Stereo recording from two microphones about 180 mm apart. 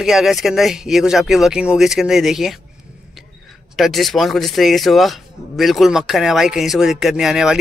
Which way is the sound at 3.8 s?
Centre (ahead or behind).